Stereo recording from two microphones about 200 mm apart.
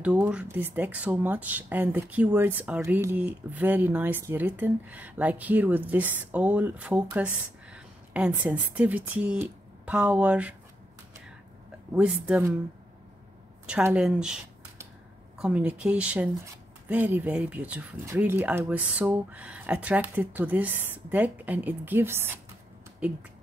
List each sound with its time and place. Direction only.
0.0 s speech: 5° right (ahead or behind)
11.9 s speech: 5° right (ahead or behind)
13.7 s speech: 5° right (ahead or behind)